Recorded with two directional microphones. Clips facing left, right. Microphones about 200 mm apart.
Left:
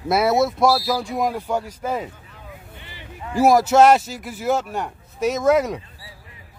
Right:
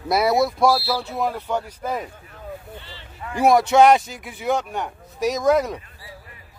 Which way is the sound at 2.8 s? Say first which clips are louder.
Left 1 dB; 15° left (ahead or behind).